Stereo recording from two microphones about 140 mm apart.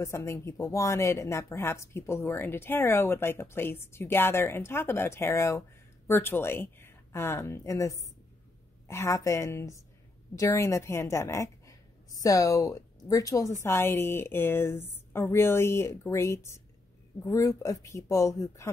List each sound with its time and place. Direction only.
0.0 s a woman's voice: 20° left (ahead or behind)